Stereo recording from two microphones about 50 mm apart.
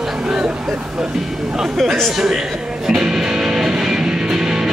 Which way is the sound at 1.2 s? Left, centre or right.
Centre.